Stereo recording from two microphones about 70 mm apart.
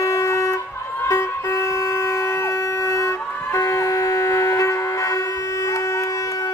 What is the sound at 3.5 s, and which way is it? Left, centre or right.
Shofar, left.